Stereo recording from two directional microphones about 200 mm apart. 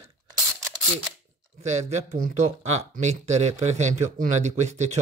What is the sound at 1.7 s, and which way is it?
Speech, 35° right (ahead or behind).